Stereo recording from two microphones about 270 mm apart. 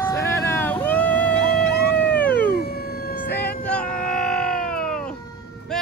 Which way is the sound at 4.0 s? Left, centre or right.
Centre.